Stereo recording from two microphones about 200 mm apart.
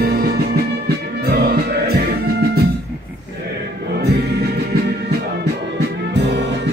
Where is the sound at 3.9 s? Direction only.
55° right (ahead or behind).